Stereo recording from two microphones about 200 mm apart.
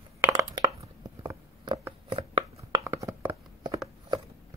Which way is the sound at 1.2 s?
20° right (ahead or behind).